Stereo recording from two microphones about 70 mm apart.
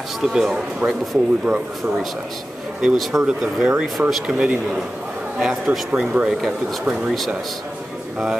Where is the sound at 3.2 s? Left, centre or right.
Centre.